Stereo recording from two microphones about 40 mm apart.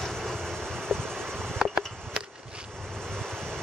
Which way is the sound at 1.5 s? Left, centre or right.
Centre.